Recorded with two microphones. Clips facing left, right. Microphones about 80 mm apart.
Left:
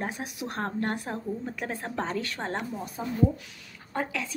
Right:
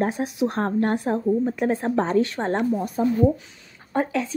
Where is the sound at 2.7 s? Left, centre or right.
Right.